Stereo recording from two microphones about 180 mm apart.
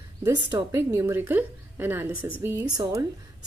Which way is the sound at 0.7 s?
15° right (ahead or behind).